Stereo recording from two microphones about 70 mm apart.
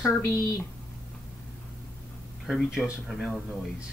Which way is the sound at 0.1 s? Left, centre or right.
Left.